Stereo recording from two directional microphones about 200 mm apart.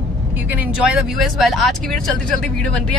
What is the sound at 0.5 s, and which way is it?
Speech, 5° right (ahead or behind).